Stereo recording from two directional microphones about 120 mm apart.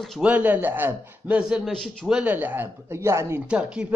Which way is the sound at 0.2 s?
15° right (ahead or behind).